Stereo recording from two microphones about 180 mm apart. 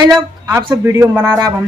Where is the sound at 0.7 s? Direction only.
15° right (ahead or behind).